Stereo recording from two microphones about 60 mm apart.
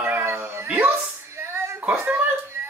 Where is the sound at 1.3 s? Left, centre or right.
Right.